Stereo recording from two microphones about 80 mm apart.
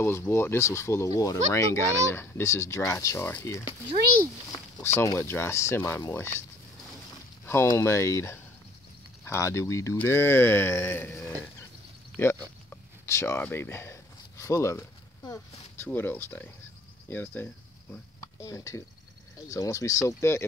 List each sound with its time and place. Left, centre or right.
0.0 s speech: left
4.8 s speech: left
7.6 s speech: left
12.2 s a sound: left
15.9 s speech: left
18.4 s speech: left